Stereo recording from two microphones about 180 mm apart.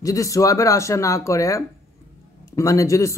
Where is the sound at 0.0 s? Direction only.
20° left (ahead or behind).